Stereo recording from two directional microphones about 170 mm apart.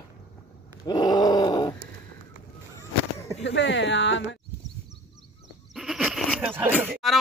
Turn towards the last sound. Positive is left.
turn(degrees=-10)  # may be behind; listen again after turning